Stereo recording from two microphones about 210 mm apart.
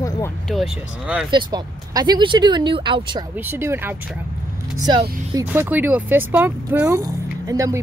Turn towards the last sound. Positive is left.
turn(degrees=-15)  # may be behind; listen again after turning